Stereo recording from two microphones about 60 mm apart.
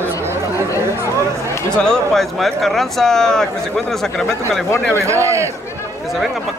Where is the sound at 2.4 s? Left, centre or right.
Centre.